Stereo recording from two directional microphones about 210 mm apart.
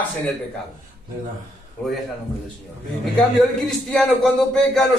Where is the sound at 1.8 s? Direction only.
5° left (ahead or behind).